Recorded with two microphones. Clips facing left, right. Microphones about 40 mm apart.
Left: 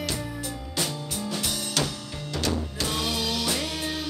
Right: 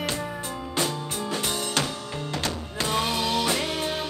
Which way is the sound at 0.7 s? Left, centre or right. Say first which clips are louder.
Right 3 dB; right.